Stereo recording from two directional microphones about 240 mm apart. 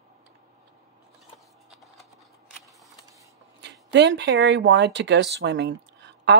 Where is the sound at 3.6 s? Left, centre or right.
Right.